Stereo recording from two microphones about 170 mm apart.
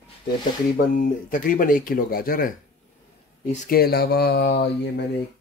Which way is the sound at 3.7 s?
65° left (ahead or behind).